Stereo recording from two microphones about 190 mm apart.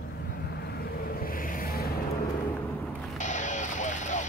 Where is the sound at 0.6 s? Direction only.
50° left (ahead or behind).